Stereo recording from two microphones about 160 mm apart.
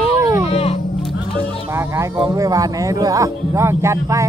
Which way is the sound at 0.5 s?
40° left (ahead or behind).